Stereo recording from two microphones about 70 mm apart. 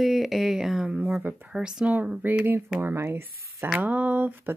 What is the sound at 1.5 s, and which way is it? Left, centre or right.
Speech, centre.